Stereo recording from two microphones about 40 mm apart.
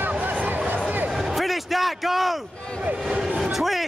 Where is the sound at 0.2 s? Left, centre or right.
Right.